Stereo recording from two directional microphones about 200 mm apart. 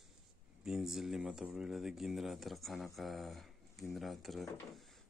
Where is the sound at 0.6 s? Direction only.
Centre (ahead or behind).